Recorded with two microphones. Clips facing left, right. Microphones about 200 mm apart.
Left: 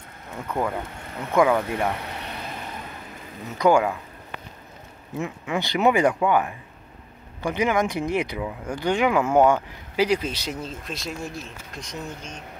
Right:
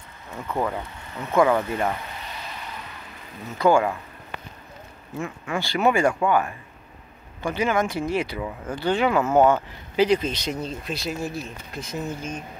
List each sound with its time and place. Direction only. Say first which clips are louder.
0.5 s speech: even; centre (ahead or behind)
1.3 s speech: even; 15° left (ahead or behind)
2.0 s a sound: left 3 dB; 65° left (ahead or behind)
3.5 s speech: even; 15° left (ahead or behind)
5.1 s speech: left 1 dB; 20° left (ahead or behind); by 12.4 s 5° right (ahead or behind)